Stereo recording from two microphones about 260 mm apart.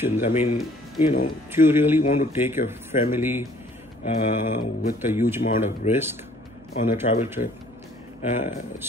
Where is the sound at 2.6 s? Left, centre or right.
Left.